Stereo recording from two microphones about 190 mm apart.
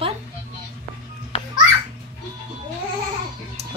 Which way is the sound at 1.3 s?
30° left (ahead or behind).